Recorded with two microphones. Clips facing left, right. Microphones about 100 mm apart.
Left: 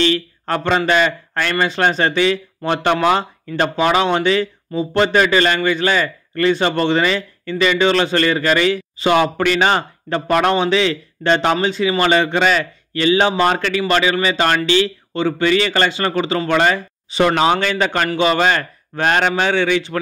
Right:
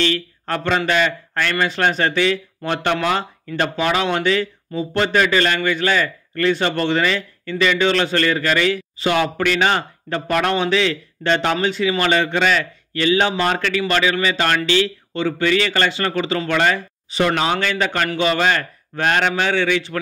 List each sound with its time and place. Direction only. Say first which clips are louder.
0.0 s speech: left 3 dB; 25° left (ahead or behind)
16.7 s speech: left 3 dB; 35° left (ahead or behind)